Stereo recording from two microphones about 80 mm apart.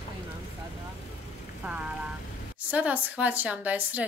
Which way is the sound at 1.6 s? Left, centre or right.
Centre.